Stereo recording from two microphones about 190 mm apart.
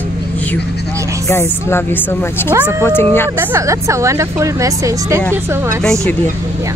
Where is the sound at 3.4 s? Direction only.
15° right (ahead or behind).